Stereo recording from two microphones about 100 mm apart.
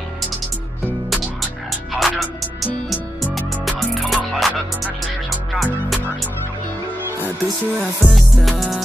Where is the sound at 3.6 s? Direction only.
Centre (ahead or behind).